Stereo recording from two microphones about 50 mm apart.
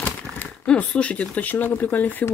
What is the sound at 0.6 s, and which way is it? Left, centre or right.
Speech, left.